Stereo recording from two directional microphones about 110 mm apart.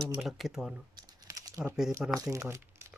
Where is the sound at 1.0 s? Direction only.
35° right (ahead or behind).